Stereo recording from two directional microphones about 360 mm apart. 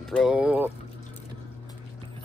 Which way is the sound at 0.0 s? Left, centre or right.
Centre.